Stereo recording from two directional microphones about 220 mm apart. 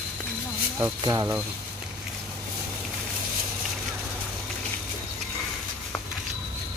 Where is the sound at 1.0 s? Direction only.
15° right (ahead or behind).